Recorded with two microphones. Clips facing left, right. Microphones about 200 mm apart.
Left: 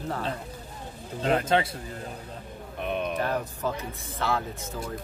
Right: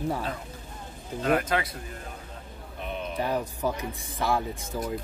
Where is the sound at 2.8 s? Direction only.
60° left (ahead or behind).